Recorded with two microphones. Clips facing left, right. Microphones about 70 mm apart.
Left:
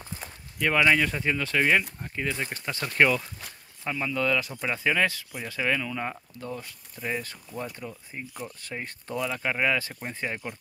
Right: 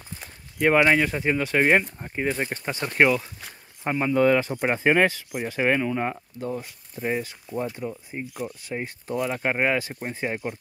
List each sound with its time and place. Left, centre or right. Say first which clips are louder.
0.6 s speech: right 4 dB; right
3.8 s speech: right 7 dB; right
7.2 s speech: right 6 dB; centre
9.2 s speech: right 3 dB; right
9.8 s speech: right 4 dB; centre